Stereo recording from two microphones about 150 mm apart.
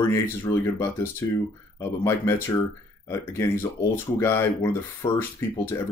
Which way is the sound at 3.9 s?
15° left (ahead or behind).